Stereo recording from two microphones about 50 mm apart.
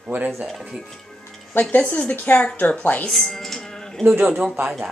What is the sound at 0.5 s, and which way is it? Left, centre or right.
Speech, centre.